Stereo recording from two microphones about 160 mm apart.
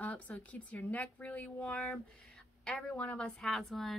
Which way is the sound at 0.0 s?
10° left (ahead or behind).